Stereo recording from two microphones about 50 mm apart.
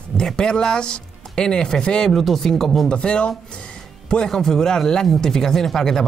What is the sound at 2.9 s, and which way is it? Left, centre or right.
Speech, left.